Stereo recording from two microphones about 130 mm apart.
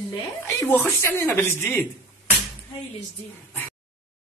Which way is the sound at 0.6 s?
15° left (ahead or behind).